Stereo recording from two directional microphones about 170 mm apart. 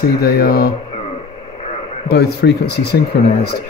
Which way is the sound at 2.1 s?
75° left (ahead or behind).